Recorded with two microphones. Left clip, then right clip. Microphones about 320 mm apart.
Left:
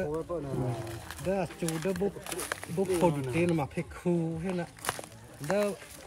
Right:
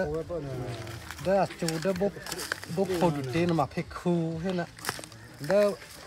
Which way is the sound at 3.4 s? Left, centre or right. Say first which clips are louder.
Right 4 dB; centre.